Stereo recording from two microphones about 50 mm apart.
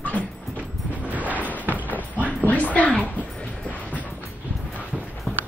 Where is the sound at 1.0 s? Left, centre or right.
Right.